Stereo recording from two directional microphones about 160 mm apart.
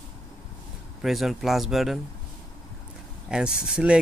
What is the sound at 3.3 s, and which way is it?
Speech, 5° right (ahead or behind).